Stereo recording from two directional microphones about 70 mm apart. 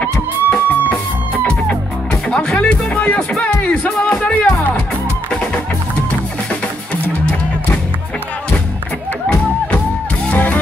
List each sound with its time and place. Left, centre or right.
0.0 s music: centre
2.2 s music: centre
10.3 s music: left